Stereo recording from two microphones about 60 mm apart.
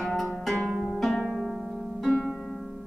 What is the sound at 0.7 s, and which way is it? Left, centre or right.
Pizzicato, centre.